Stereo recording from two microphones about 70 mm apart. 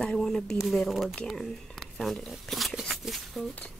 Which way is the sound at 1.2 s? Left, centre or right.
Centre.